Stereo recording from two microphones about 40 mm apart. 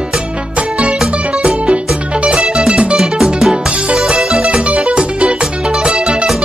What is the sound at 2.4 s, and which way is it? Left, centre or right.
Music, centre.